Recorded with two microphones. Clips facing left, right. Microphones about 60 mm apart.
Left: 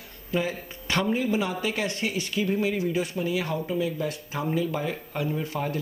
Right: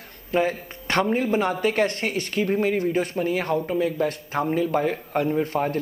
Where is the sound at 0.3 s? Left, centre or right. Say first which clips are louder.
Right 5 dB; right.